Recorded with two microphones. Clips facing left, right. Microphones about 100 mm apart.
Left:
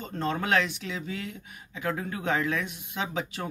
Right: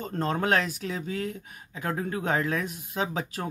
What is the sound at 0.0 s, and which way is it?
Speech, 40° right (ahead or behind).